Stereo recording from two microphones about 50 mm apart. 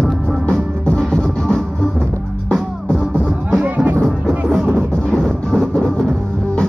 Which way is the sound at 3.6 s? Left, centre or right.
Right.